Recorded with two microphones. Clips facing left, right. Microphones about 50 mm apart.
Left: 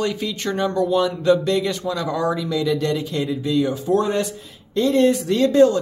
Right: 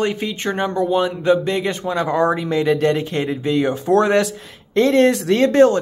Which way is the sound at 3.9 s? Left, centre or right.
Right.